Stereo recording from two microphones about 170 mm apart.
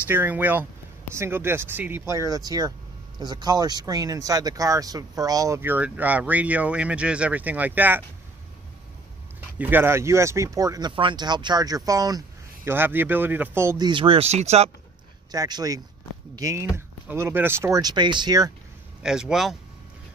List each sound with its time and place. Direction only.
0.0 s speech: 10° right (ahead or behind)
9.6 s speech: 10° right (ahead or behind); by 14.7 s 40° right (ahead or behind)
15.3 s speech: 20° right (ahead or behind)
19.0 s speech: 5° right (ahead or behind)